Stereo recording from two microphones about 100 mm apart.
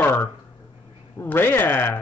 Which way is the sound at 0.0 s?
20° left (ahead or behind).